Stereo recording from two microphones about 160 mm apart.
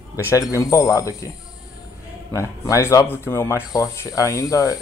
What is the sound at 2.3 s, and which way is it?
Speech, 20° left (ahead or behind).